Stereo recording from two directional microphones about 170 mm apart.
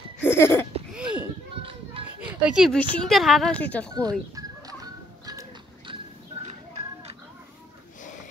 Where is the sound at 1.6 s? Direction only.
30° right (ahead or behind).